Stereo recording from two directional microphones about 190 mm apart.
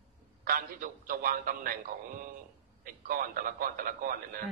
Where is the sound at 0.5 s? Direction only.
50° right (ahead or behind).